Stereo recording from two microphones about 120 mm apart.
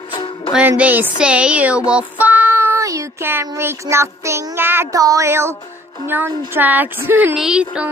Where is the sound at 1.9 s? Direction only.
10° right (ahead or behind).